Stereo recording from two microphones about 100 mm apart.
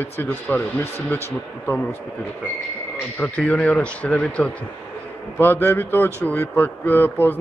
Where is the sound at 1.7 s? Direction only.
15° left (ahead or behind).